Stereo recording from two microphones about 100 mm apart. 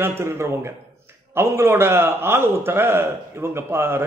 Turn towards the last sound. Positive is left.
turn(degrees=-25)  # may be behind; listen again after turning